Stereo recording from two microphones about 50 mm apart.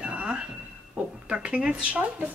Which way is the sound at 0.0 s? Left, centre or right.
Right.